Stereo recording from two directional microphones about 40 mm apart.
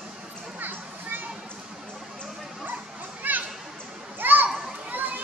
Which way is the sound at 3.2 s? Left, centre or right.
Right.